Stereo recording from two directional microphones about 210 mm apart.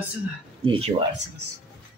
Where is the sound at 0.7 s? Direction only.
25° right (ahead or behind).